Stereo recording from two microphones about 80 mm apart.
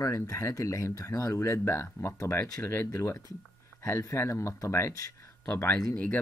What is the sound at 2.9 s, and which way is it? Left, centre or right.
Speech, left.